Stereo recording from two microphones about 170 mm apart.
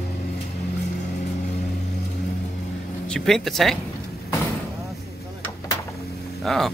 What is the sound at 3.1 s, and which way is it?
Speech, centre (ahead or behind).